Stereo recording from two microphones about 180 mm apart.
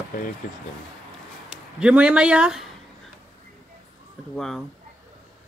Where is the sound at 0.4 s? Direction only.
45° left (ahead or behind).